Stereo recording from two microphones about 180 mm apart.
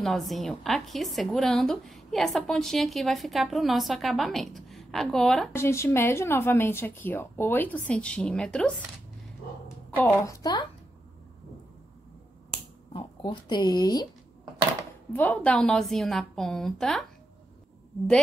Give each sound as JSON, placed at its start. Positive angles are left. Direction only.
{"t": 0.0, "sound": "a woman's voice", "side_deg": 0}
{"t": 5.5, "sound": "speech", "side_deg": 15}
{"t": 9.9, "sound": "a woman's voice", "side_deg": 15}
{"t": 12.9, "sound": "speech", "side_deg": 25}
{"t": 15.1, "sound": "a woman's voice", "side_deg": 10}